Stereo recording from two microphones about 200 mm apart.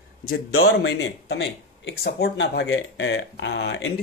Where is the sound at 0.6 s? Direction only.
60° left (ahead or behind).